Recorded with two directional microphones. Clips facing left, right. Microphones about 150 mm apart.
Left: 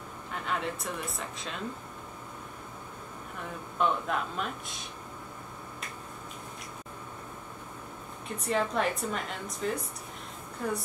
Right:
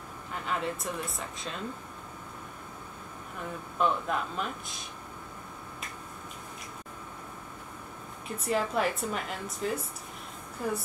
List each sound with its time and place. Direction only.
0.3 s speech: centre (ahead or behind)
3.7 s a woman's voice: centre (ahead or behind)
8.4 s a woman's voice: 5° right (ahead or behind)